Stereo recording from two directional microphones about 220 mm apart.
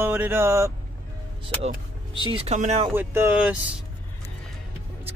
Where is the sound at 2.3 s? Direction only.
30° right (ahead or behind).